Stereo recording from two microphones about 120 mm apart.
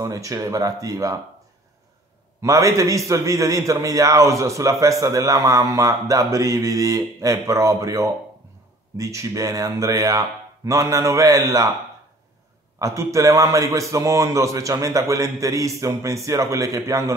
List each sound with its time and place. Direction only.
0.0 s a man's voice: 25° right (ahead or behind)
2.4 s a man's voice: 25° right (ahead or behind)
12.7 s a man's voice: 25° right (ahead or behind)